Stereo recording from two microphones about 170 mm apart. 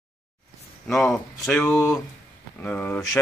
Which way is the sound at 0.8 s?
Centre (ahead or behind).